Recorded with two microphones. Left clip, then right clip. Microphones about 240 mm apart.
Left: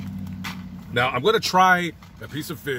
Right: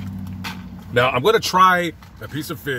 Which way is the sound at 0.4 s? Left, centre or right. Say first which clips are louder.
Right 3 dB; centre.